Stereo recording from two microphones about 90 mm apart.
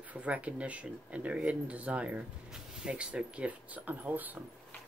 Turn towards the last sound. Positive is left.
turn(degrees=-20)  # may be behind; listen again after turning